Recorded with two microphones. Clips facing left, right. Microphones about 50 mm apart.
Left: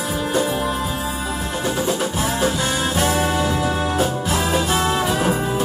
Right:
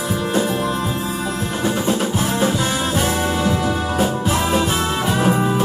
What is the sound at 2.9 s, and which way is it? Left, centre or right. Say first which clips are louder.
Music: left 2 dB; centre.